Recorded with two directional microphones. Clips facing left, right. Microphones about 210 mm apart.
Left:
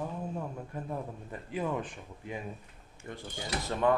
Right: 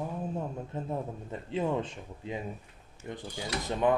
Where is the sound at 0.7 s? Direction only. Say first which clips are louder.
Right 3 dB; 25° right (ahead or behind).